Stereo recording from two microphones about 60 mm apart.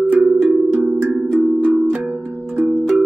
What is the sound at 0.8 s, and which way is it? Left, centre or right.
Music, right.